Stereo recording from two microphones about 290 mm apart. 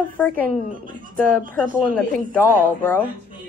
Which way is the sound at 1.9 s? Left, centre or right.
Centre.